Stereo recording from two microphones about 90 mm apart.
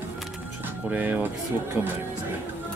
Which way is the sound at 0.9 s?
20° right (ahead or behind).